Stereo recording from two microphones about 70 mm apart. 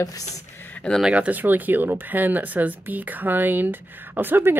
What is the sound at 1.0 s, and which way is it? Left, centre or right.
Speech, centre.